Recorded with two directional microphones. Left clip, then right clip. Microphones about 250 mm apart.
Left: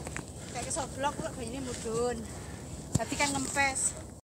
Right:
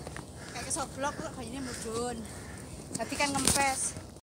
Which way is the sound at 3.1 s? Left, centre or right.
Right.